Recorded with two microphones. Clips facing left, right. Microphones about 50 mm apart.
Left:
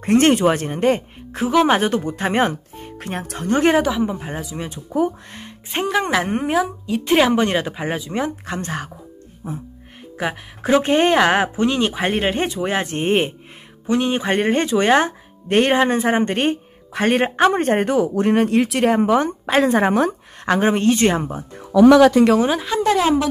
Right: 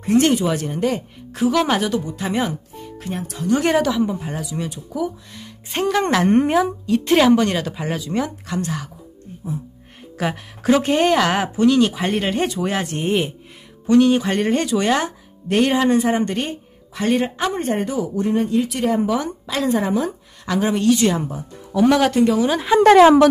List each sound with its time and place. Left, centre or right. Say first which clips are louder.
0.0 s speech: left 2 dB; left
1.8 s speech: left 2 dB; left
3.7 s speech: even; centre; by 5.5 s left
5.7 s speech: right 1 dB; centre
6.9 s speech: right 2 dB; centre; by 8.9 s left
10.1 s speech: right 1 dB; centre; by 13.3 s left
13.8 s speech: right 4 dB; left
18.9 s speech: left 4 dB; left
22.8 s a woman's voice: right 8 dB; right